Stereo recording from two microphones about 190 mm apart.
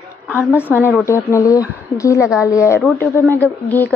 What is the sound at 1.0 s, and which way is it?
Speech, 15° left (ahead or behind).